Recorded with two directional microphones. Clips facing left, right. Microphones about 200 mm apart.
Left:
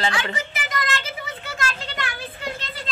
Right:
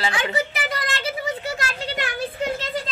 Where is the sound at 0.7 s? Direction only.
30° right (ahead or behind).